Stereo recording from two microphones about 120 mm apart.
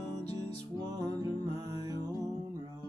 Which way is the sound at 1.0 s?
35° right (ahead or behind).